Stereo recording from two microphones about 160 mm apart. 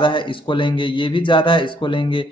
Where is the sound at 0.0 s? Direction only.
30° left (ahead or behind).